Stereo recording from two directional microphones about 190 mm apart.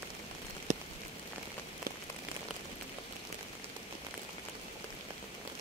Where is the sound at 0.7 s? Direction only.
40° right (ahead or behind).